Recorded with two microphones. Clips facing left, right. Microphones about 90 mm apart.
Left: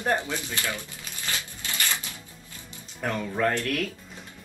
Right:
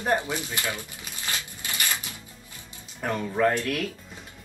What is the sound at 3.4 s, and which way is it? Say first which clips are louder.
Speech: right 2 dB; 15° right (ahead or behind).